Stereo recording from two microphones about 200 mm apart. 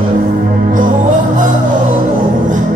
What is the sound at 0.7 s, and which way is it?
Music, 40° right (ahead or behind).